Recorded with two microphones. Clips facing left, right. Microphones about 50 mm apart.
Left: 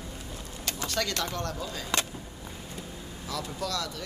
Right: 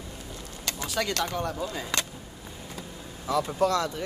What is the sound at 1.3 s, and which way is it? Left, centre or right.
Speech, centre.